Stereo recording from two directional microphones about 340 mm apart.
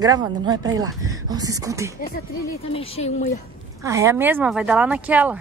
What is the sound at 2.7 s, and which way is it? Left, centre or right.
Speech, centre.